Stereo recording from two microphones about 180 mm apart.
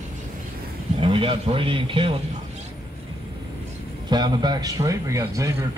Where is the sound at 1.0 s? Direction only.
30° right (ahead or behind).